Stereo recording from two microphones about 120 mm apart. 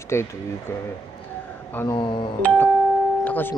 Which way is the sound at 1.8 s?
45° left (ahead or behind).